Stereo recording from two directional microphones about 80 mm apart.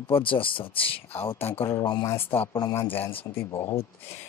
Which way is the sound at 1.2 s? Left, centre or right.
Left.